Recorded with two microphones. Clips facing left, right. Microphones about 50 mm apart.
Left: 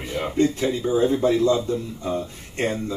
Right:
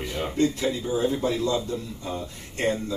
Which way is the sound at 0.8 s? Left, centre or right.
Left.